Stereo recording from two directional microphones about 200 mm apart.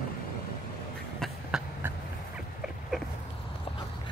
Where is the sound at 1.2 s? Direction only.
5° right (ahead or behind).